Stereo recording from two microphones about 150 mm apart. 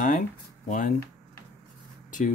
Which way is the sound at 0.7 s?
60° left (ahead or behind).